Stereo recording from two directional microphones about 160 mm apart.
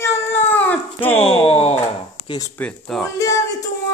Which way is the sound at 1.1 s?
40° left (ahead or behind).